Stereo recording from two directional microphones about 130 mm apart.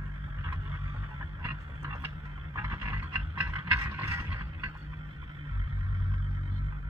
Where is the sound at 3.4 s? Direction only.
20° right (ahead or behind).